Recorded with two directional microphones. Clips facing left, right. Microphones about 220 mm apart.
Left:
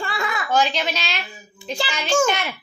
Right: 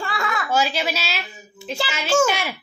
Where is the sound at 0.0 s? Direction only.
Centre (ahead or behind).